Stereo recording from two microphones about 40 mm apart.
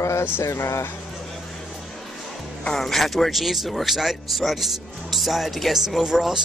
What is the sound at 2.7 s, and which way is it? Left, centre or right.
Speech, centre.